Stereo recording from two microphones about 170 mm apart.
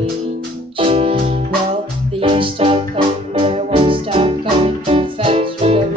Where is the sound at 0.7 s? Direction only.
35° right (ahead or behind).